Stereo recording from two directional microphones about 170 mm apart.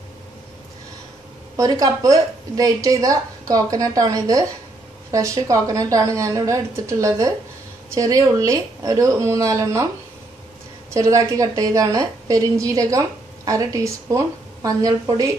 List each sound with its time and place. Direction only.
1.6 s a woman's voice: 20° right (ahead or behind)
10.9 s a woman's voice: 20° right (ahead or behind)